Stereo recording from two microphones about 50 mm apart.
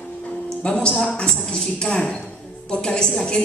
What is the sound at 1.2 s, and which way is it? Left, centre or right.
A woman's voice, centre.